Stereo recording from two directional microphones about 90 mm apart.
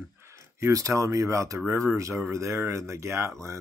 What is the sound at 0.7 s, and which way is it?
Speech, 35° right (ahead or behind).